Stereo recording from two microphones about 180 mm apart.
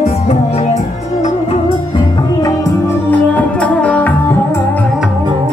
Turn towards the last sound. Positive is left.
turn(degrees=10)  # may be behind; listen again after turning